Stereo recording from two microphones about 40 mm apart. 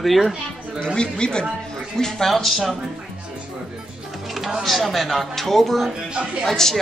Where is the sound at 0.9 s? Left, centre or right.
Left.